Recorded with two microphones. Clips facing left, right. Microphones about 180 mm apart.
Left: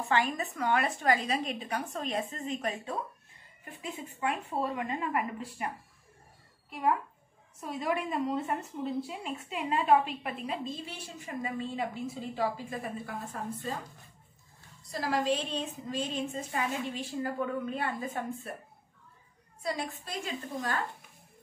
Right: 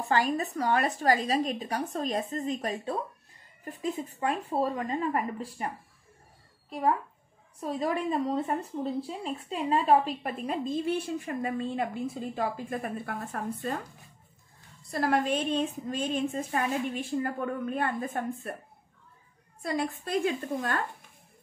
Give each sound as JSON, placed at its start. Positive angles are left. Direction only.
{"t": 0.1, "sound": "a woman's voice", "side_deg": -40}
{"t": 7.6, "sound": "a woman's voice", "side_deg": -30}
{"t": 14.9, "sound": "a woman's voice", "side_deg": -55}
{"t": 19.6, "sound": "a woman's voice", "side_deg": -55}